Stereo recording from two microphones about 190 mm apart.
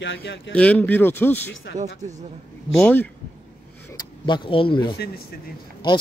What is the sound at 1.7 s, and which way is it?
Speech, 70° left (ahead or behind).